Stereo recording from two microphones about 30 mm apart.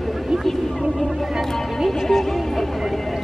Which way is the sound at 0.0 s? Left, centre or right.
Centre.